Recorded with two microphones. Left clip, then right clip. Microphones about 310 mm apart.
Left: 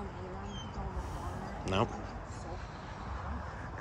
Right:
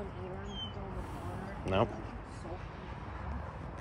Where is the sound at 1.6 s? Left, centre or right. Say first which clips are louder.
Right 1 dB; centre.